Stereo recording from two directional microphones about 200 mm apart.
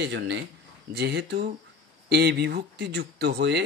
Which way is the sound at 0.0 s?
60° right (ahead or behind).